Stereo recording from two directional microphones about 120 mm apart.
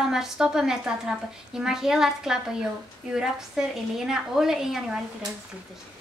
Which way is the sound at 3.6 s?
5° right (ahead or behind).